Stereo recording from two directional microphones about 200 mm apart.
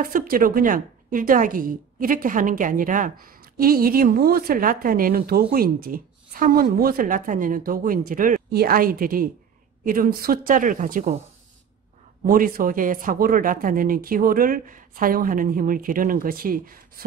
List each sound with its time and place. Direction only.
0.0 s a woman's voice: 45° right (ahead or behind)
12.3 s a woman's voice: 45° right (ahead or behind)